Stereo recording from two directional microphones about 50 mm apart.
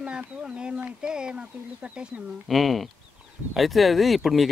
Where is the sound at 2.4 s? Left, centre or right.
Centre.